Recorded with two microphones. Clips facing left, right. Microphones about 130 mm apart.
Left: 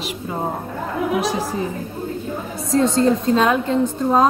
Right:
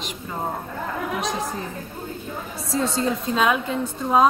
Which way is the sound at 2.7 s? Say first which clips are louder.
Left 7 dB; 5° right (ahead or behind).